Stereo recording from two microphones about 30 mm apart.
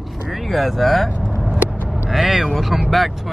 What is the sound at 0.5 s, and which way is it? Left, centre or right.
Speech, centre.